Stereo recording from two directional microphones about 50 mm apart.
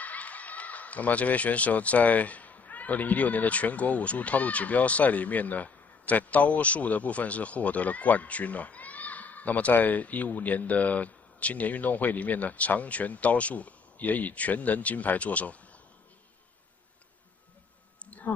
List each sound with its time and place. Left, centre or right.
0.0 s speech: left